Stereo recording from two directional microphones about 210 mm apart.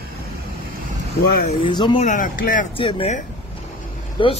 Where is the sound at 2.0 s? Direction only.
40° left (ahead or behind).